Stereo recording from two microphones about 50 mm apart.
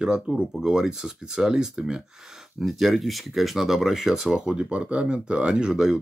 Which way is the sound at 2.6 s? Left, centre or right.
Centre.